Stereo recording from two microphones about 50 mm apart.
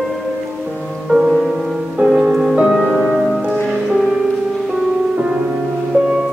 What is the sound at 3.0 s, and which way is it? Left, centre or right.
Music, centre.